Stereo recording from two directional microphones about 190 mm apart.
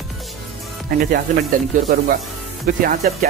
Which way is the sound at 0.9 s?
50° right (ahead or behind).